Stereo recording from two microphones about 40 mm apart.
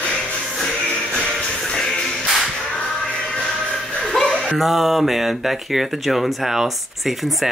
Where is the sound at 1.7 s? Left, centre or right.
Centre.